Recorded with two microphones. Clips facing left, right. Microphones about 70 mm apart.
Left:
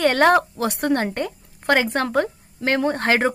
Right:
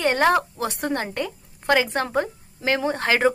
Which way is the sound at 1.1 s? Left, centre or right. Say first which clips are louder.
Left 2 dB; left.